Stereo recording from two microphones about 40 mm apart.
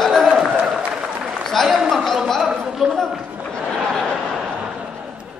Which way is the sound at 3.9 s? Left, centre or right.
Centre.